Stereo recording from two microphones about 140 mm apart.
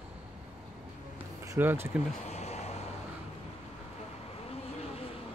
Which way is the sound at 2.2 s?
50° left (ahead or behind).